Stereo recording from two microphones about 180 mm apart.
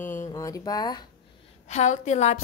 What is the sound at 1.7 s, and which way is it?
Speech, 40° left (ahead or behind).